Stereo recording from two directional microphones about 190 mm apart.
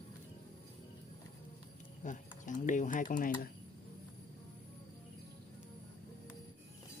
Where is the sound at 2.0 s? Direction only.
40° left (ahead or behind).